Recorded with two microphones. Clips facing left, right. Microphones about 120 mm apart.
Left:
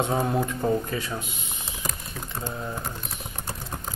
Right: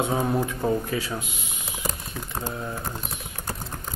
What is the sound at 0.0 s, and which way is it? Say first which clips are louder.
Speech: even; centre (ahead or behind).